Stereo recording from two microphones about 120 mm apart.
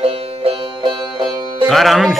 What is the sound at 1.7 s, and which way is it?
Speech, centre (ahead or behind).